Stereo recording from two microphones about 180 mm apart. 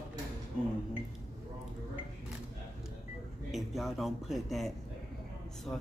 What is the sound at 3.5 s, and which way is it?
A man's voice, centre (ahead or behind).